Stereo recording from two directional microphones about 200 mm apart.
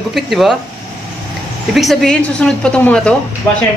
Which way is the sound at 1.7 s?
Centre (ahead or behind).